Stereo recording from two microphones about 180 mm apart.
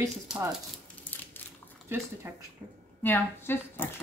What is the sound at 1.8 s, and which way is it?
Speech, 15° right (ahead or behind).